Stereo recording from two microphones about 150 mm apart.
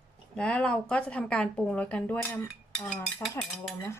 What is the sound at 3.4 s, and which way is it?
Dishes, 5° left (ahead or behind).